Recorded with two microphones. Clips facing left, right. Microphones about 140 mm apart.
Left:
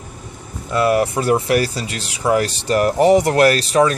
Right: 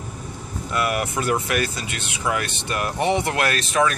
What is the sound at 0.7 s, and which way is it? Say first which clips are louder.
Speech: left 8 dB; 30° left (ahead or behind).